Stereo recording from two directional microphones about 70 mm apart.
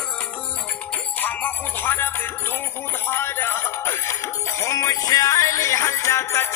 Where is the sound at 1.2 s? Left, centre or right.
Left.